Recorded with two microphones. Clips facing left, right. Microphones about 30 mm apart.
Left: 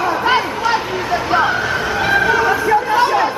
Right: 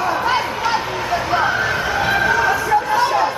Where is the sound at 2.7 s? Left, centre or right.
Centre.